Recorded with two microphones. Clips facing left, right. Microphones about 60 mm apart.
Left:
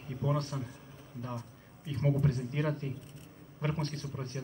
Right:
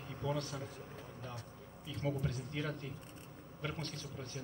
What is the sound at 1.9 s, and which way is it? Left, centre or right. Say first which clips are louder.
Speech: left 8 dB; left.